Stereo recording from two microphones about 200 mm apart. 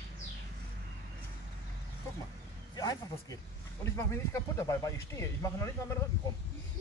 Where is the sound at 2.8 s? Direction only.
20° left (ahead or behind).